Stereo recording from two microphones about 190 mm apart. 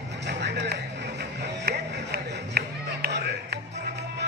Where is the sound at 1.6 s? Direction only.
55° right (ahead or behind).